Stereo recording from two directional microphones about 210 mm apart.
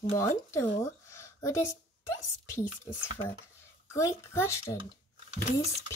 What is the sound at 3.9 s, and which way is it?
Speech, 15° left (ahead or behind).